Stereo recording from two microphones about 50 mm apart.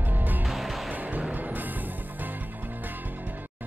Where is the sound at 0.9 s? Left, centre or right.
Right.